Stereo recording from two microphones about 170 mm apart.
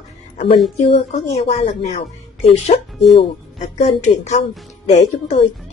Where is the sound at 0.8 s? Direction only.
35° left (ahead or behind).